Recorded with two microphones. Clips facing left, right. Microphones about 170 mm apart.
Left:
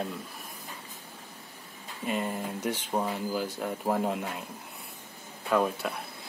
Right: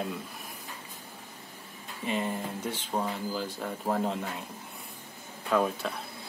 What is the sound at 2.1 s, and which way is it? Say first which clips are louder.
Speech: even; 5° left (ahead or behind).